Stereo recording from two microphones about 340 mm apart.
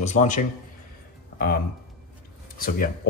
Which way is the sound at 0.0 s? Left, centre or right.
Left.